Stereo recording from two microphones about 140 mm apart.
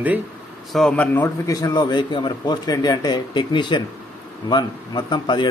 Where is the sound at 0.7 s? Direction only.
5° left (ahead or behind); by 5.4 s 35° left (ahead or behind).